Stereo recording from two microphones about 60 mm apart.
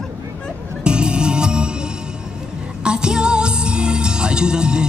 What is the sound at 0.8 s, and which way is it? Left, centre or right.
Music, centre.